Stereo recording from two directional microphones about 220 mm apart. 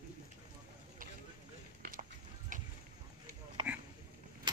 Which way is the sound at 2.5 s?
35° right (ahead or behind).